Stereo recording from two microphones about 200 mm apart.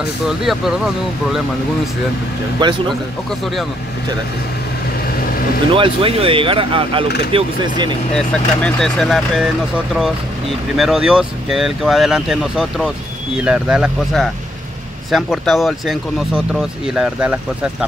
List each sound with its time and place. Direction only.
2.6 s speech: 20° right (ahead or behind)
5.7 s speech: 25° right (ahead or behind)
8.2 s speech: 5° left (ahead or behind)
10.8 s speech: 5° right (ahead or behind)